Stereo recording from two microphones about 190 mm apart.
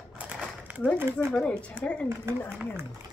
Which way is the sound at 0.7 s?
10° right (ahead or behind).